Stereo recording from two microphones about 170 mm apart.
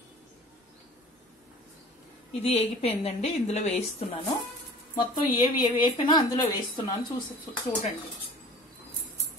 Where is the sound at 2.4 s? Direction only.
35° left (ahead or behind).